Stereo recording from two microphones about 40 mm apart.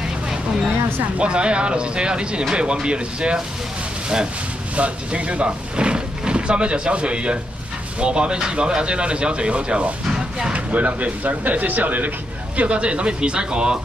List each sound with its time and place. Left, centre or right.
1.1 s speech: right
4.7 s speech: right
10.5 s speech: right
12.5 s speech: right